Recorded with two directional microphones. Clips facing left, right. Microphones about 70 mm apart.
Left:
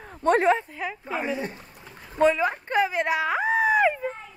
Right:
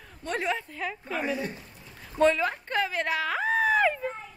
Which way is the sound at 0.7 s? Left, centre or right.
Centre.